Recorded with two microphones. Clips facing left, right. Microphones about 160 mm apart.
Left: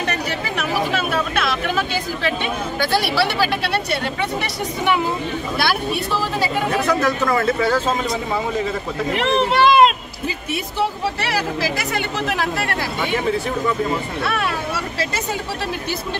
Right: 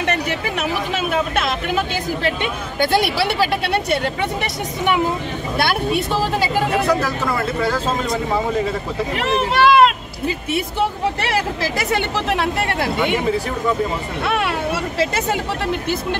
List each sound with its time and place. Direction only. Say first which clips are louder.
0.6 s chatter: left 4 dB; 20° right (ahead or behind)
2.8 s speech: right 2 dB; 20° right (ahead or behind)
6.7 s speech: even; 5° right (ahead or behind)
9.5 s speech: right 1 dB; 20° left (ahead or behind)
11.9 s speech: right 3 dB; 25° right (ahead or behind)